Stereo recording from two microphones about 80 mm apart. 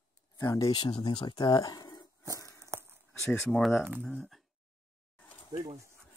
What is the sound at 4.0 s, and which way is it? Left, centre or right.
Speech, centre.